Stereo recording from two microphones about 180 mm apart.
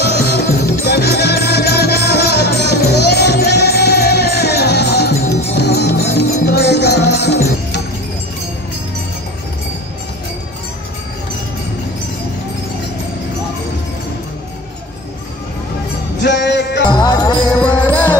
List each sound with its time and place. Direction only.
0.0 s music: 65° left (ahead or behind)
16.2 s music: 75° left (ahead or behind)
16.9 s music: 25° left (ahead or behind)
17.5 s music: 5° left (ahead or behind)